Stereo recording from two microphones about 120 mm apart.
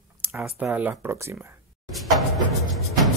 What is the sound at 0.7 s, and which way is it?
Speech, 15° right (ahead or behind).